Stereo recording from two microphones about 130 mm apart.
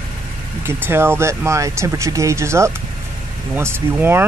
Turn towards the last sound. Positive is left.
turn(degrees=-15)  # may be behind; listen again after turning